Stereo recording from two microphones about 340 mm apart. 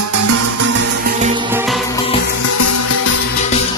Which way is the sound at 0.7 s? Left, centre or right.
Right.